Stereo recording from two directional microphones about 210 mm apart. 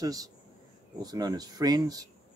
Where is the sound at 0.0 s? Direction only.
15° right (ahead or behind).